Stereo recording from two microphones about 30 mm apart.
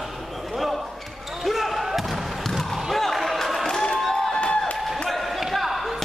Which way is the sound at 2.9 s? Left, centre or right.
Centre.